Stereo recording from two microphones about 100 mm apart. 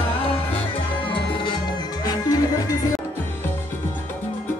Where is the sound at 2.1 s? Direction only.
40° left (ahead or behind).